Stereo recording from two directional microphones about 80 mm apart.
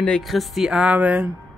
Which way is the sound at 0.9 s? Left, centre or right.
Centre.